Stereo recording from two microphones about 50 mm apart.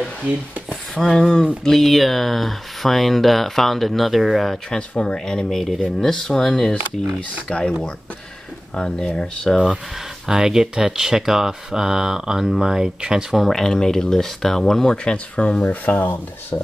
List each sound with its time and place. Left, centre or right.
1.1 s speech: centre
4.6 s speech: centre
7.5 s speech: left
10.2 s speech: centre
13.4 s speech: centre; by 16.1 s left